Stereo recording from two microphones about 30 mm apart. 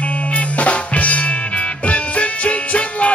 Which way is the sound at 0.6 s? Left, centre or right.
Left.